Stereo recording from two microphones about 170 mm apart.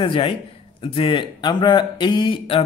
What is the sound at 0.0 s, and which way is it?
Speech, 30° left (ahead or behind).